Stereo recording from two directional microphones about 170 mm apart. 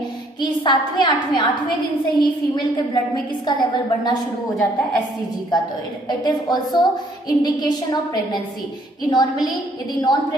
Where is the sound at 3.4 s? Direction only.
25° left (ahead or behind).